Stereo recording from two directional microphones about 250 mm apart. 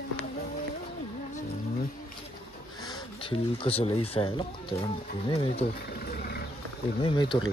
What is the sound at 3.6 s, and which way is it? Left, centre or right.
Speech, left.